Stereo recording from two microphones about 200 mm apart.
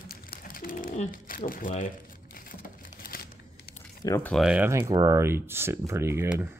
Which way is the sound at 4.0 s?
15° left (ahead or behind).